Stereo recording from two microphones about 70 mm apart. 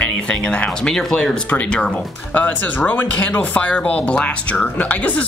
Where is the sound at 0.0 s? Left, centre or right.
Centre.